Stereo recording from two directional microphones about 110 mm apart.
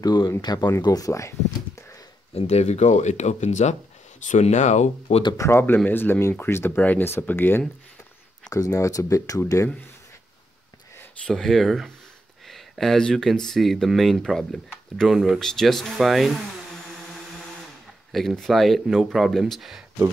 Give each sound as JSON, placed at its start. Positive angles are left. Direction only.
{"t": 0.0, "sound": "speech", "side_deg": 35}
{"t": 2.3, "sound": "speech", "side_deg": 80}
{"t": 5.4, "sound": "speech", "side_deg": 25}
{"t": 8.5, "sound": "speech", "side_deg": 30}
{"t": 11.2, "sound": "speech", "side_deg": 5}